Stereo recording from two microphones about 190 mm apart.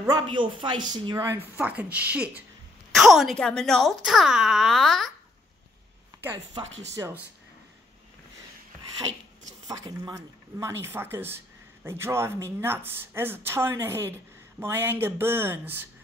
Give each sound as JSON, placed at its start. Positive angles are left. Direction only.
{"t": 0.3, "sound": "speech", "side_deg": -25}
{"t": 7.0, "sound": "speech", "side_deg": -15}
{"t": 9.7, "sound": "speech", "side_deg": -20}